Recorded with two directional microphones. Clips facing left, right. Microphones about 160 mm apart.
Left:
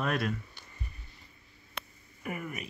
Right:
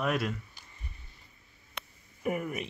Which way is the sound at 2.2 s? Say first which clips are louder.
Right 6 dB; 15° right (ahead or behind).